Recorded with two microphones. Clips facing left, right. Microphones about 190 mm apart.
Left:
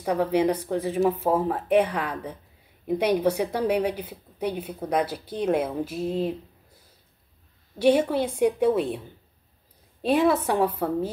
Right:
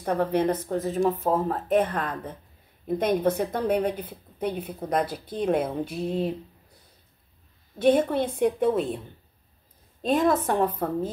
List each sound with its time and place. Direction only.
0.0 s a woman's voice: 10° left (ahead or behind)
7.8 s a woman's voice: 10° left (ahead or behind)
10.0 s a woman's voice: 5° left (ahead or behind)